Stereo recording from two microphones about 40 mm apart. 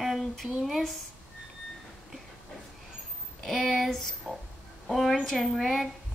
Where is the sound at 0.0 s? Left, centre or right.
Centre.